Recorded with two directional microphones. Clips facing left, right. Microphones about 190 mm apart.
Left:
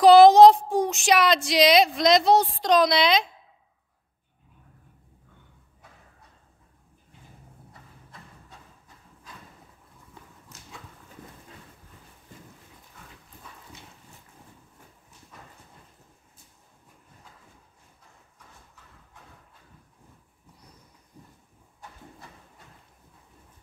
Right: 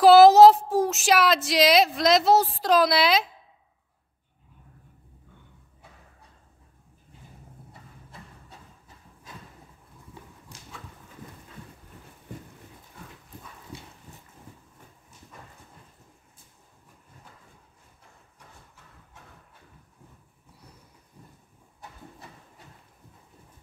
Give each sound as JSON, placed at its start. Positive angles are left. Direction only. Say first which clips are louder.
{"t": 0.0, "sound": "speech", "louder": "even", "side_deg": -5}